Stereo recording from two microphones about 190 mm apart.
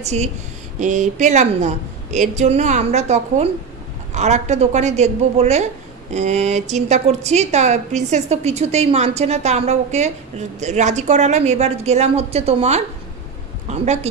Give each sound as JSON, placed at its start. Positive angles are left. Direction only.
{"t": 0.0, "sound": "a woman's voice", "side_deg": -35}